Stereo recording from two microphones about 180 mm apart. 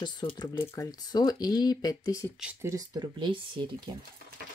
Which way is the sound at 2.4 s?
5° right (ahead or behind).